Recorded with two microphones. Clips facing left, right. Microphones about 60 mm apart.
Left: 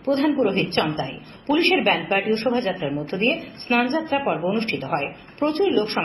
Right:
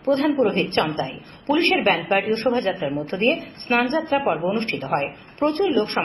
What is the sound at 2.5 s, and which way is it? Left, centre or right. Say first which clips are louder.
Speech: right 2 dB; left.